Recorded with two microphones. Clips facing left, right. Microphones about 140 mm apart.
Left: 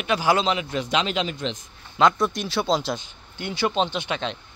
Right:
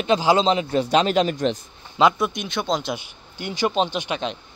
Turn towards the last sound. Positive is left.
turn(degrees=-15)  # may be behind; listen again after turning